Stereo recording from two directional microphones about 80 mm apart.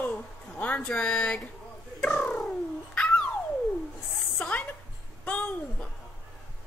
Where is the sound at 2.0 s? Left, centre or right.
Centre.